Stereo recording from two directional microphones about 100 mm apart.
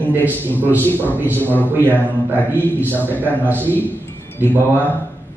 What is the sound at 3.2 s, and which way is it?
A man's voice, 20° right (ahead or behind).